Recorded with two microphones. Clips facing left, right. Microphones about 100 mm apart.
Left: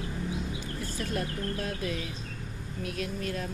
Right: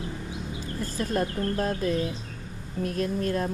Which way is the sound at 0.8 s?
40° right (ahead or behind).